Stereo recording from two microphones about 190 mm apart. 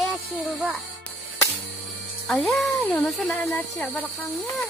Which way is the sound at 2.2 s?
Centre (ahead or behind).